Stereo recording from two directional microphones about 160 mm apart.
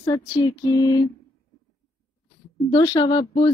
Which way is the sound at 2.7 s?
25° left (ahead or behind).